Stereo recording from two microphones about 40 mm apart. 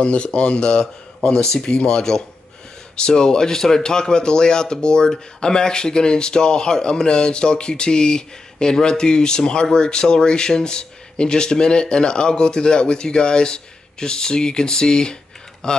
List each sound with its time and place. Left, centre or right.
0.0 s speech: left